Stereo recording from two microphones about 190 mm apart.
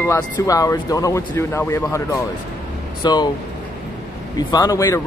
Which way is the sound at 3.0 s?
20° left (ahead or behind).